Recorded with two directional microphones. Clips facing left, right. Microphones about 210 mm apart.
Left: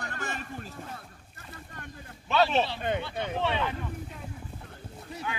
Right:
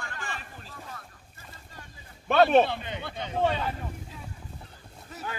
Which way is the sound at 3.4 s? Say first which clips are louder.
Right 4 dB; 40° right (ahead or behind).